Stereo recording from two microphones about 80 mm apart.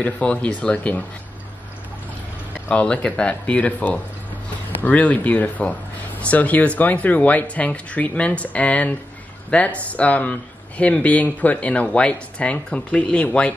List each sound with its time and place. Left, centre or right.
0.0 s speech: centre
2.7 s speech: centre